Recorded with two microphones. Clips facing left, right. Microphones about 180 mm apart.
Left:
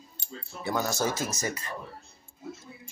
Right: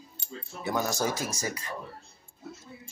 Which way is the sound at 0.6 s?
15° right (ahead or behind).